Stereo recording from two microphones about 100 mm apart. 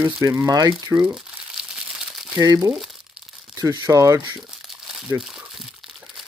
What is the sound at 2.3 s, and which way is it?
Speech, 35° right (ahead or behind).